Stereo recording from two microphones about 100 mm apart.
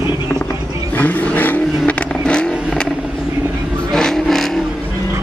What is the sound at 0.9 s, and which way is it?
Vehicle, 15° left (ahead or behind).